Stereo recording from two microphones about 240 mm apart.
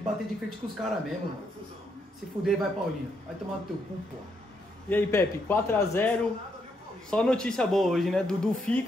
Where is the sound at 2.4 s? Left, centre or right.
Right.